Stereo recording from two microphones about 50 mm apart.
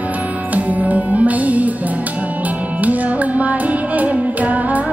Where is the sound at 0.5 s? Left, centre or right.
Right.